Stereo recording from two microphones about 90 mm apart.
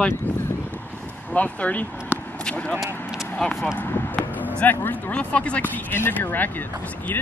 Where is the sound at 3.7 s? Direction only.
20° left (ahead or behind).